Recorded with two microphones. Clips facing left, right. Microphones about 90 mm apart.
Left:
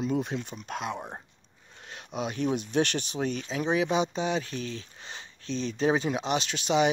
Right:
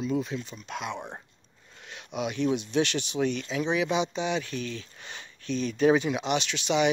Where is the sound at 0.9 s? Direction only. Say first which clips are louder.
Even; 10° left (ahead or behind).